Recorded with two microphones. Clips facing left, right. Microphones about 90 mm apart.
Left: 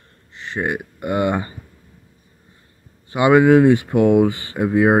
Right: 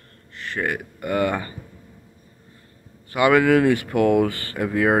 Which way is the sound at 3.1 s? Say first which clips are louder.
Left 4 dB; 20° left (ahead or behind).